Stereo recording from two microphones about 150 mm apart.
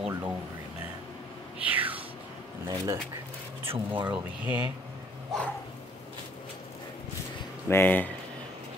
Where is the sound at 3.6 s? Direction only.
35° right (ahead or behind).